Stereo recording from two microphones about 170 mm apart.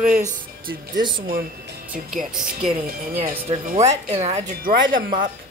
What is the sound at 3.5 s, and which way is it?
Speech, 35° right (ahead or behind).